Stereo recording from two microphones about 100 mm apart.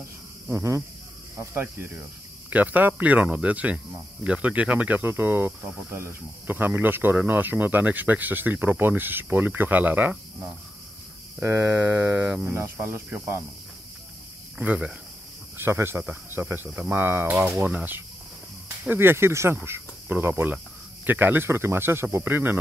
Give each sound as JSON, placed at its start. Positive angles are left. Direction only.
{"t": 0.5, "sound": "speech", "side_deg": -25}
{"t": 11.4, "sound": "speech", "side_deg": -25}
{"t": 14.6, "sound": "speech", "side_deg": -10}
{"t": 15.5, "sound": "speech", "side_deg": -25}